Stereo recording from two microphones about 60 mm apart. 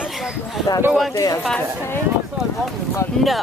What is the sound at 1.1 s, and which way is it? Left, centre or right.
Speech, left.